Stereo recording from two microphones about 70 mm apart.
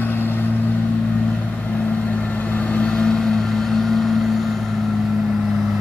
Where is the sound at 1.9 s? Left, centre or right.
Left; by 4.7 s centre.